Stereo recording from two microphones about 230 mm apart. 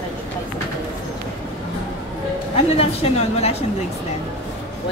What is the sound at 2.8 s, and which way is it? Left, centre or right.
Speech, left.